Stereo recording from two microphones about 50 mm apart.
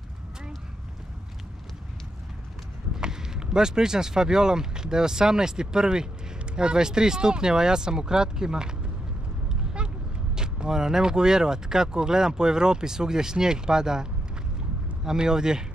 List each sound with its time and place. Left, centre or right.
3.0 s speech: centre
9.8 s a sound: centre
10.3 s speech: centre
15.0 s speech: centre